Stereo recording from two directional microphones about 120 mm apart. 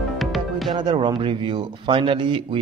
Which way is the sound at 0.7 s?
40° right (ahead or behind).